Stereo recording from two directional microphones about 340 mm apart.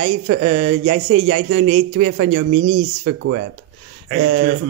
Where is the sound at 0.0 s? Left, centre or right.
Right.